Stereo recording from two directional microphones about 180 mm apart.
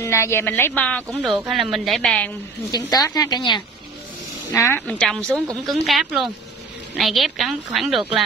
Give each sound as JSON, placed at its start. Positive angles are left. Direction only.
{"t": 0.0, "sound": "a woman's voice", "side_deg": 15}
{"t": 2.7, "sound": "a woman's voice", "side_deg": 20}
{"t": 4.5, "sound": "a woman's voice", "side_deg": 10}